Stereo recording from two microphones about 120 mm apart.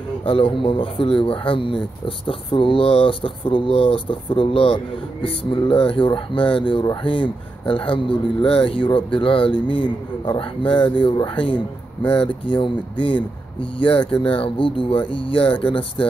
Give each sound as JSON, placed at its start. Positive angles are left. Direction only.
{"t": 0.2, "sound": "speech", "side_deg": 45}